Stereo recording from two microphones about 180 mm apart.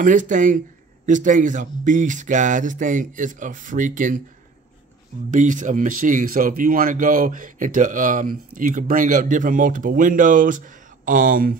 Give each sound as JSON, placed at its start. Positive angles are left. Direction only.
{"t": 0.0, "sound": "speech", "side_deg": -45}
{"t": 5.3, "sound": "speech", "side_deg": -45}